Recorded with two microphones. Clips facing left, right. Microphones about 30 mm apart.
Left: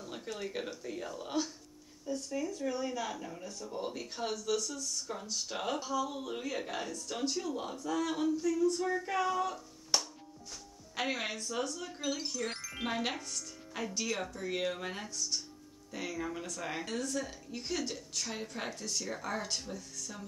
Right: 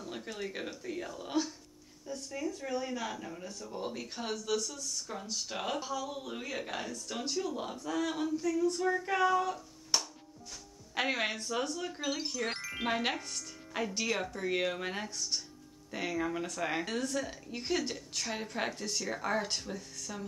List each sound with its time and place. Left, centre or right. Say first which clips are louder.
0.0 s speech: right 1 dB; centre
3.4 s speech: even; centre
3.7 s speech: even; centre
9.4 s a sound: right 1 dB; centre
11.0 s speech: right 3 dB; centre